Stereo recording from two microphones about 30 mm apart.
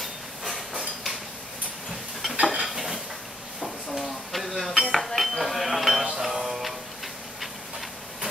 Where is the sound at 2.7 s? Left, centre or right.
Centre.